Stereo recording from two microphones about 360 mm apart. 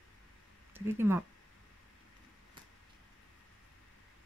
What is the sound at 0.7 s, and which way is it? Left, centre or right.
Speech, centre.